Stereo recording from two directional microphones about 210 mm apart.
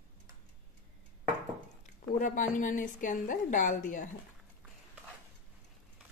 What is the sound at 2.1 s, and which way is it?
A woman's voice, 40° left (ahead or behind).